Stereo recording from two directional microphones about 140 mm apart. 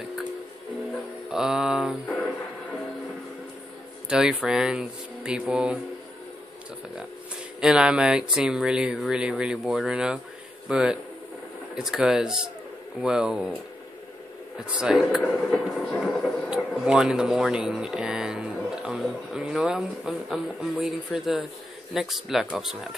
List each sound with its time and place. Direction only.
1.3 s a sound: 5° right (ahead or behind)
2.0 s music: 10° left (ahead or behind)
4.1 s speech: 5° right (ahead or behind)
7.6 s speech: 5° right (ahead or behind)
14.8 s speech: 5° right (ahead or behind)
15.5 s speech: 5° left (ahead or behind)